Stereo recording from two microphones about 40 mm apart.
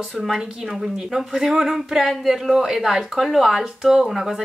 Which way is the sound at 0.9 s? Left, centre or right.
Centre.